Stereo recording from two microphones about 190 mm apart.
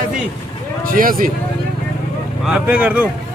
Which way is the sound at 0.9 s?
45° right (ahead or behind).